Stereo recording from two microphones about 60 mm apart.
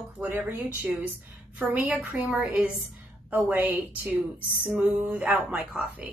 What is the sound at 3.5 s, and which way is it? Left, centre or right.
A woman's voice, right.